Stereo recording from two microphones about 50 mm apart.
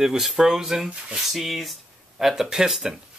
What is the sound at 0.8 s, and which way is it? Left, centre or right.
Speech, right.